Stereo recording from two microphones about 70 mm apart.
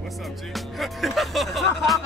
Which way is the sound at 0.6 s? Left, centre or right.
Centre.